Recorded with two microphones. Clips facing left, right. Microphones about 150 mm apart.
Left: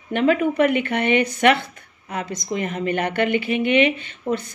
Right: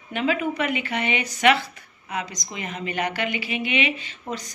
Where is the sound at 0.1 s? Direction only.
55° left (ahead or behind).